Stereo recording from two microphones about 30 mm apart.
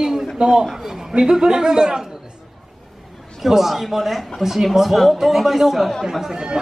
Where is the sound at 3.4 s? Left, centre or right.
Centre.